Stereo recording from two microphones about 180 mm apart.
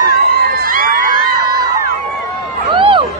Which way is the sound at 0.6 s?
50° right (ahead or behind).